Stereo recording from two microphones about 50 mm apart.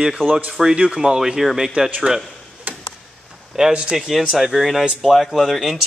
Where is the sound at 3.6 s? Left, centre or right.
Centre.